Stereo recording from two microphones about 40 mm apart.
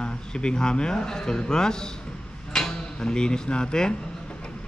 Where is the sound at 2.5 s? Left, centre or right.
Centre.